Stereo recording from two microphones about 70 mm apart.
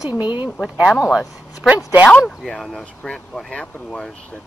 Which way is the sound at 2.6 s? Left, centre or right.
Centre.